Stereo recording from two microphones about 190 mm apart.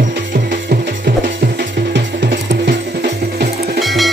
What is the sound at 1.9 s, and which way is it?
Music, 65° right (ahead or behind).